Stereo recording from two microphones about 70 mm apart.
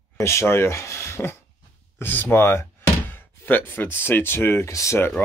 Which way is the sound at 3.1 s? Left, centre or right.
Left.